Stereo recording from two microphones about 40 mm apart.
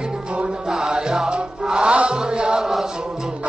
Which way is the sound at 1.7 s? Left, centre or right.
Right.